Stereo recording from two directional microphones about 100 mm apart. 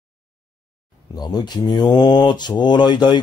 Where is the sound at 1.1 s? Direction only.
45° left (ahead or behind).